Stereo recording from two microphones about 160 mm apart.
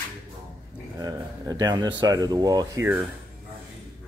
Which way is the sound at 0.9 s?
25° right (ahead or behind).